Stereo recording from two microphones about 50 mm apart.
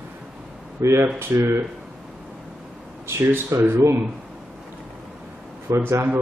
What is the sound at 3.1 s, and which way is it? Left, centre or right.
Speech, right.